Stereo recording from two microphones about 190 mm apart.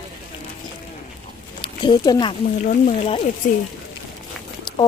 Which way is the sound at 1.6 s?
25° left (ahead or behind).